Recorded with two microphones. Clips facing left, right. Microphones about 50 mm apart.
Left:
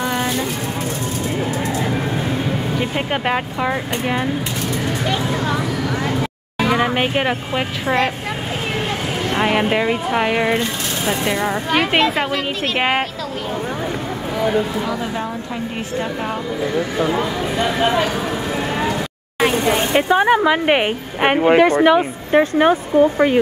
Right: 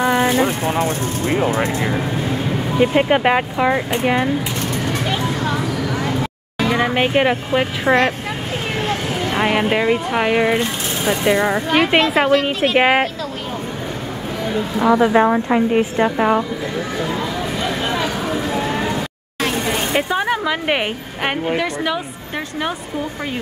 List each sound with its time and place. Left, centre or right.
0.0 s vehicle: centre
1.3 s speech: right
2.8 s speech: centre
5.0 s a sound: centre
5.5 s a sound: centre
6.6 s speech: centre
9.3 s speech: centre
14.8 s speech: right
15.1 s a woman's voice: right
16.0 s speech: right
17.7 s a sound: centre
19.4 s vehicle: centre
20.1 s speech: centre
21.5 s speech: left